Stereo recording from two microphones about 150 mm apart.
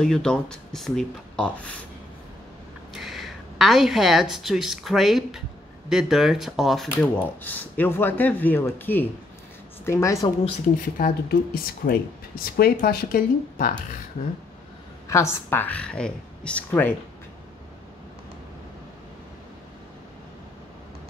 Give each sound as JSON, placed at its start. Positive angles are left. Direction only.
{"t": 0.0, "sound": "speech", "side_deg": 5}
{"t": 2.9, "sound": "a woman's voice", "side_deg": 0}
{"t": 7.4, "sound": "speech", "side_deg": 10}
{"t": 11.0, "sound": "speech", "side_deg": 70}
{"t": 12.5, "sound": "speech", "side_deg": 85}
{"t": 15.0, "sound": "speech", "side_deg": 20}